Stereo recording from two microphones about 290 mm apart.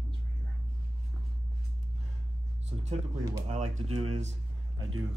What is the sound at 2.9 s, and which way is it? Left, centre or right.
Speech, centre.